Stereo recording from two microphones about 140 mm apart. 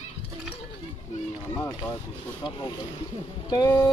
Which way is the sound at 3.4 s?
25° left (ahead or behind).